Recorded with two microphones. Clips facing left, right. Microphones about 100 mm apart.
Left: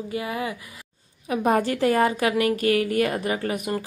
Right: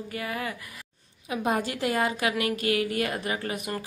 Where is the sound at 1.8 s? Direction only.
40° left (ahead or behind).